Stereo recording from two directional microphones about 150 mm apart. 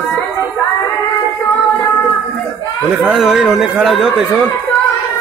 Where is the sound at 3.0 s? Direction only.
5° right (ahead or behind).